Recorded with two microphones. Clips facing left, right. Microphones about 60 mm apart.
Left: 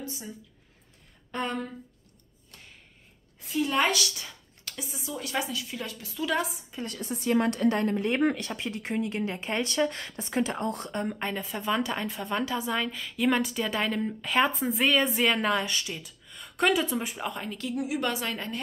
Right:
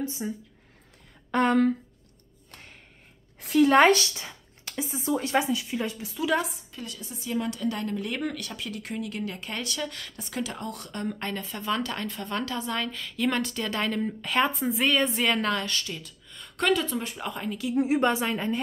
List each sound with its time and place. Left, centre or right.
0.0 s speech: right
1.3 s speech: right
3.3 s speech: right
3.9 s speech: right
5.3 s speech: right
6.2 s speech: centre
7.0 s a woman's voice: left
11.1 s a woman's voice: centre
17.7 s speech: right; by 18.6 s centre